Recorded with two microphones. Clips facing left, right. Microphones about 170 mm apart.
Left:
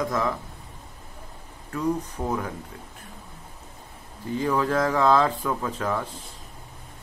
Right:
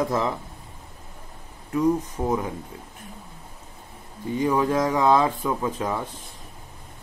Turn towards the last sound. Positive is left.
turn(degrees=-15)  # may be behind; listen again after turning